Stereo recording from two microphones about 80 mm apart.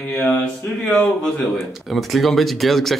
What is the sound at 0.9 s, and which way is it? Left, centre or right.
Speech, centre.